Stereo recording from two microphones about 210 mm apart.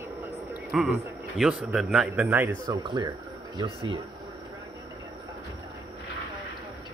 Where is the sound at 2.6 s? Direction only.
20° right (ahead or behind).